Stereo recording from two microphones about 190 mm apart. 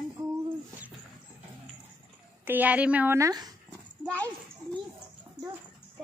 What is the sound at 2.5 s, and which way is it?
Speech, 10° right (ahead or behind).